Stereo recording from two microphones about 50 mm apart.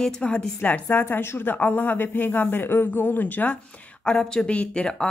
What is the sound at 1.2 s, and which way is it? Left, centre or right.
Speech, left.